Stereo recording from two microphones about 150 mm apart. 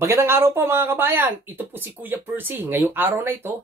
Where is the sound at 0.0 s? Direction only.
20° right (ahead or behind).